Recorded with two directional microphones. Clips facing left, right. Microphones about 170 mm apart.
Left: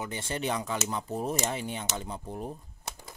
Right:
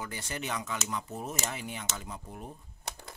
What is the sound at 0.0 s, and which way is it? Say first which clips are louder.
Speech: left 5 dB; 25° left (ahead or behind).